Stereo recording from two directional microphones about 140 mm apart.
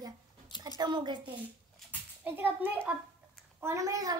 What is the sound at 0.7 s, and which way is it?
Speech, 30° right (ahead or behind).